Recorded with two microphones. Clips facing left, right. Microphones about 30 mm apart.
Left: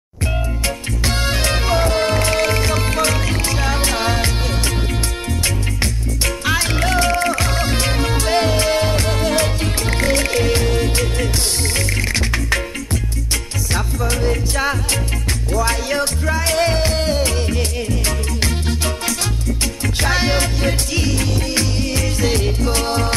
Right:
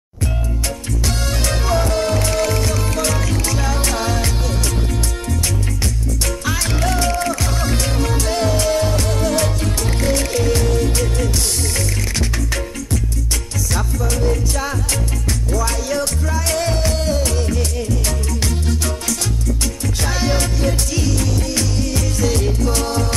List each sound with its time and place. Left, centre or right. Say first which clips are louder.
1.0 s music: left 3 dB; left
6.2 s music: left 4 dB; left
13.7 s music: left 1 dB; left